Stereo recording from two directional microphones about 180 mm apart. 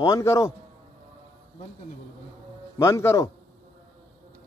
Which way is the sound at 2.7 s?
15° left (ahead or behind).